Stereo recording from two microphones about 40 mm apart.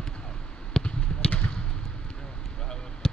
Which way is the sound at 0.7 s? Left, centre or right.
Left.